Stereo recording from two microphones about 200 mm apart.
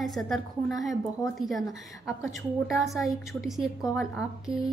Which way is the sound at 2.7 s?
Centre (ahead or behind).